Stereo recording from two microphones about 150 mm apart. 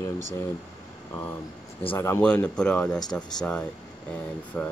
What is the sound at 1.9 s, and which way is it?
Speech, 20° left (ahead or behind).